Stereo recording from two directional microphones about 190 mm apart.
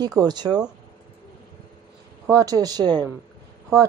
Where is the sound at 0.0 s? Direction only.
20° right (ahead or behind).